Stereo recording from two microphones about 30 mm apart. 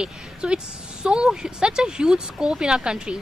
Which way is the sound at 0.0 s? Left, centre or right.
Right.